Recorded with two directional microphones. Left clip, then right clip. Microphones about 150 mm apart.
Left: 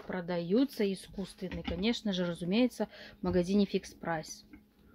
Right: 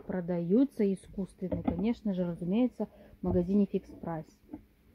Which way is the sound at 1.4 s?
25° right (ahead or behind).